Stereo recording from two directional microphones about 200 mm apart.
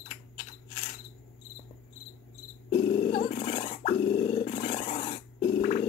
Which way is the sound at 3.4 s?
30° left (ahead or behind).